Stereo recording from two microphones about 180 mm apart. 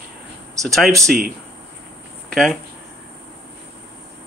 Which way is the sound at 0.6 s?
20° right (ahead or behind).